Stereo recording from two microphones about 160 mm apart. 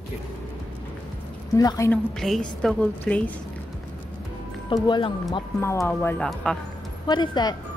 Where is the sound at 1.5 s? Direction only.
20° left (ahead or behind).